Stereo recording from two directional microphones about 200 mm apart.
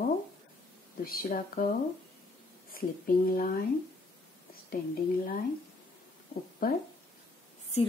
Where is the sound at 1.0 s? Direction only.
45° left (ahead or behind).